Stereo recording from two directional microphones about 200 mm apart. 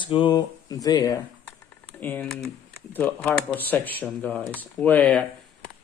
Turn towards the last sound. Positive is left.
turn(degrees=5)  # may be behind; listen again after turning